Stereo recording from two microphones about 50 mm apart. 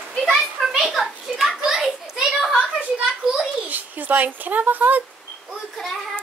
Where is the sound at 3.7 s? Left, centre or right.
Right.